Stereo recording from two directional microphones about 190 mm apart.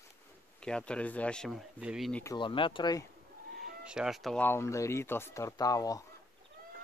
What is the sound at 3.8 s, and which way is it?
Speech, 5° right (ahead or behind).